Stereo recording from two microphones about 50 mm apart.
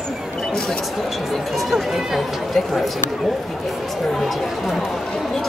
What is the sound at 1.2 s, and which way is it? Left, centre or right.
Speech, centre.